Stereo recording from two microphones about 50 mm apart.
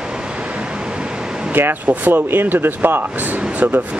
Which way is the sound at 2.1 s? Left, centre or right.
Right.